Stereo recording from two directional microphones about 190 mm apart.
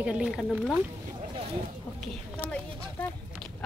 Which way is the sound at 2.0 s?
5° left (ahead or behind).